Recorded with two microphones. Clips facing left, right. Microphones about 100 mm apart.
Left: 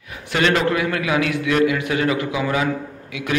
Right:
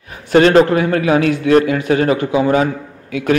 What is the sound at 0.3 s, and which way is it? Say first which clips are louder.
A man's voice: right 9 dB; 40° right (ahead or behind).